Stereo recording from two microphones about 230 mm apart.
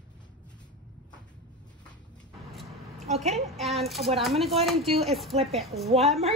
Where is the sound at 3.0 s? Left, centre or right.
Right.